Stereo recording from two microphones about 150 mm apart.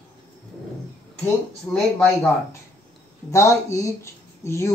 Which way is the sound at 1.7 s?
5° left (ahead or behind).